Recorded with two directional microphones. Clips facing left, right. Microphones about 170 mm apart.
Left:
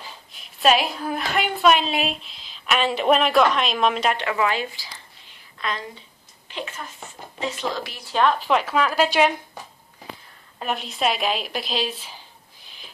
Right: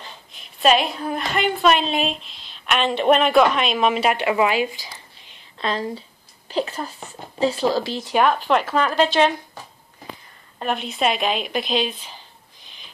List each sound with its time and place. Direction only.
0.0 s a woman's voice: centre (ahead or behind)
4.3 s a sound: 15° right (ahead or behind)
5.6 s speech: 35° right (ahead or behind)
8.1 s speech: 10° right (ahead or behind)
8.5 s a woman's voice: centre (ahead or behind)
10.6 s a woman's voice: centre (ahead or behind)
12.6 s owl: 5° left (ahead or behind)